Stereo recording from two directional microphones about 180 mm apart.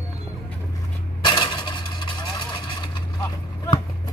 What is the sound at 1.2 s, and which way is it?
Vehicle, 25° left (ahead or behind).